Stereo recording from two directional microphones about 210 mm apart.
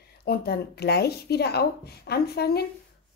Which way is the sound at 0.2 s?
50° left (ahead or behind).